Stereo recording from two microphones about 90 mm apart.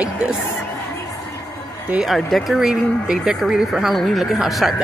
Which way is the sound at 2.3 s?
Centre (ahead or behind).